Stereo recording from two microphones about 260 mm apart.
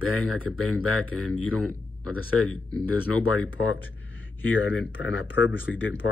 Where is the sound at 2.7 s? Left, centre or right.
Centre.